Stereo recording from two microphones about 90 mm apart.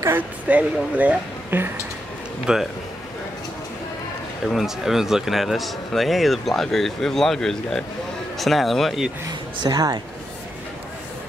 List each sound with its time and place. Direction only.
0.0 s a woman's voice: 20° right (ahead or behind)
2.4 s a man's voice: 5° right (ahead or behind)
4.5 s a man's voice: centre (ahead or behind)
9.6 s a woman's voice: 50° right (ahead or behind)